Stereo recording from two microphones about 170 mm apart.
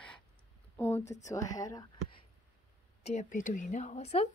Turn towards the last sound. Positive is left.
turn(degrees=40)  # may be behind; listen again after turning